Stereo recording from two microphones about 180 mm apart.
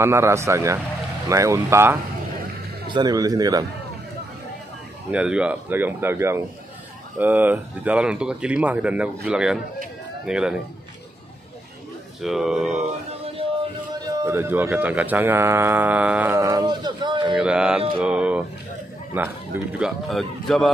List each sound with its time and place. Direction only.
0.0 s speech: 15° right (ahead or behind)
5.1 s a man's voice: 5° right (ahead or behind)
12.2 s a man's voice: centre (ahead or behind)
14.1 s speech: 15° right (ahead or behind)
17.3 s a man's voice: 5° right (ahead or behind)